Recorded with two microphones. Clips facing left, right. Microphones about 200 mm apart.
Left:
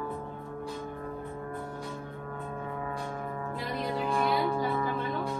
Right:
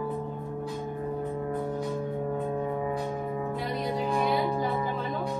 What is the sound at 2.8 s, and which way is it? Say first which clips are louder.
Music: right 5 dB; 15° right (ahead or behind).